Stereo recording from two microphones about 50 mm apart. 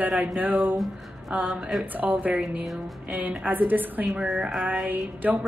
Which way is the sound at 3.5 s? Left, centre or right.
Right.